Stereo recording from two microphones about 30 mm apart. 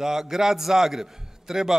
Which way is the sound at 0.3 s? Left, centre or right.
Centre.